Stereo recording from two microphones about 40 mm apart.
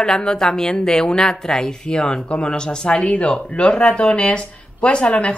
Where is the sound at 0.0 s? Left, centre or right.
Centre.